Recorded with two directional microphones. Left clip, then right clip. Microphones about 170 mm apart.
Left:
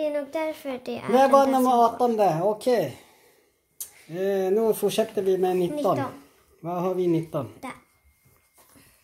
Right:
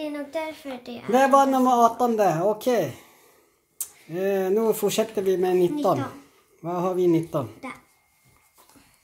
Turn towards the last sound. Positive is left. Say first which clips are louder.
# even
turn(degrees=70)  # may be behind; listen again after turning